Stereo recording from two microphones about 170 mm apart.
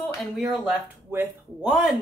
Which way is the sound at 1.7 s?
Centre (ahead or behind).